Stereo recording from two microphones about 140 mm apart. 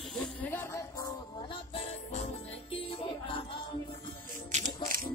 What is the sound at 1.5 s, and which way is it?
Music, 45° left (ahead or behind).